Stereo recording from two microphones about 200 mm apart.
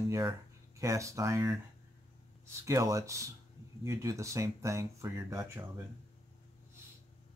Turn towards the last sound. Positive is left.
turn(degrees=-15)  # may be behind; listen again after turning